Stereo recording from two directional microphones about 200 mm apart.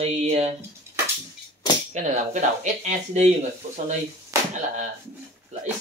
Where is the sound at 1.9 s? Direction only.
35° right (ahead or behind).